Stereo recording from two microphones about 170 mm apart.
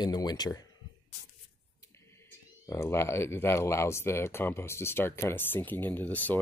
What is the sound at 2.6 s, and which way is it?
Speech, 15° left (ahead or behind).